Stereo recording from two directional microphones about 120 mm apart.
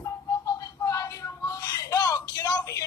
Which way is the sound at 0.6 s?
30° left (ahead or behind).